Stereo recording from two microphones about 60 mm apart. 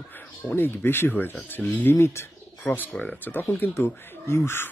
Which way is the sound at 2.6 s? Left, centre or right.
Left.